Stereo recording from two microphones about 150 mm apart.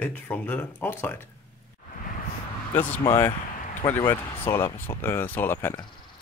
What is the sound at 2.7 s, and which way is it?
Speech, 15° left (ahead or behind).